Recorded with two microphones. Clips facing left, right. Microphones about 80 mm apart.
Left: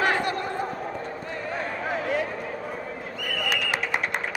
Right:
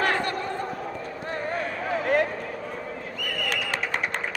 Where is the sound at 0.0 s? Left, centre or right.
Centre.